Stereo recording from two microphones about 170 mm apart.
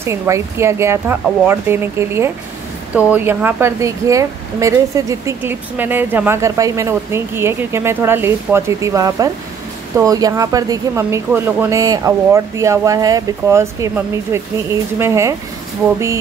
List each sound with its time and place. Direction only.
0.0 s a woman's voice: 15° right (ahead or behind)